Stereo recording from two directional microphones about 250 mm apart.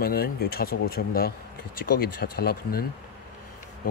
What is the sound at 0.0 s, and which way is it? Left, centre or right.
Speech, left.